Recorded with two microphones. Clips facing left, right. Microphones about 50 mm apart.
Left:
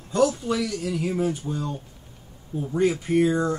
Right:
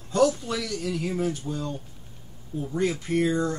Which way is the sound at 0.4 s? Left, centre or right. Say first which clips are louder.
Left 4 dB; centre.